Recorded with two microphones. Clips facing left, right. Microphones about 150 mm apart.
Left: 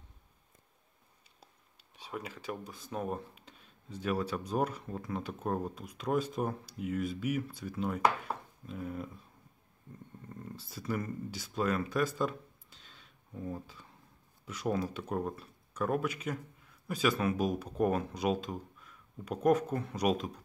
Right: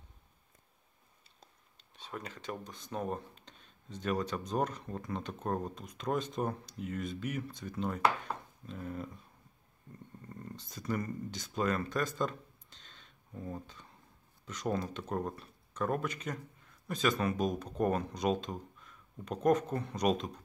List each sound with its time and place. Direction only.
1.4 s a sound: 10° left (ahead or behind)
2.6 s speech: 5° left (ahead or behind)
10.4 s speech: 5° left (ahead or behind)